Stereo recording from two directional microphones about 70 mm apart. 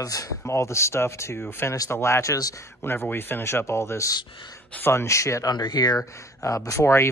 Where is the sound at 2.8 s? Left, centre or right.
Left.